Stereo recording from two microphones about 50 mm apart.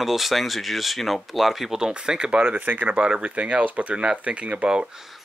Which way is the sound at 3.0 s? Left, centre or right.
Right.